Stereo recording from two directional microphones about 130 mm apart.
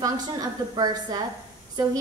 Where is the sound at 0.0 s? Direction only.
30° right (ahead or behind).